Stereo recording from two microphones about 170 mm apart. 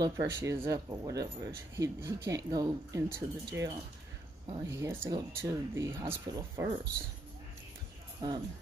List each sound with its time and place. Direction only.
0.0 s speech: 20° right (ahead or behind)
8.2 s speech: 25° right (ahead or behind)